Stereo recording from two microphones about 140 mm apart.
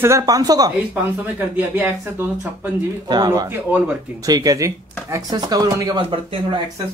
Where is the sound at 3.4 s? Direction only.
15° right (ahead or behind).